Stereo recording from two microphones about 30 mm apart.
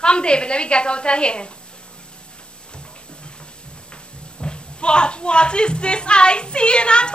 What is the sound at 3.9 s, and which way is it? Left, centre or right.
Speech, left.